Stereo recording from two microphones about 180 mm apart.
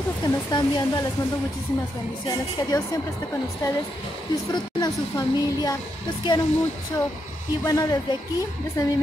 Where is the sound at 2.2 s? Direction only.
20° left (ahead or behind).